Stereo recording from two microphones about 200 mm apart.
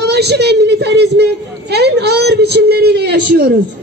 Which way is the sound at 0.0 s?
55° right (ahead or behind).